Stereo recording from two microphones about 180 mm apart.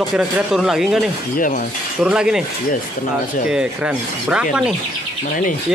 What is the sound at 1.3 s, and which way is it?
Speech, 50° left (ahead or behind).